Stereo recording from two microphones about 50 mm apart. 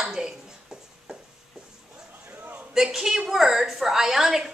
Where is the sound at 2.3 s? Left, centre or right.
Right.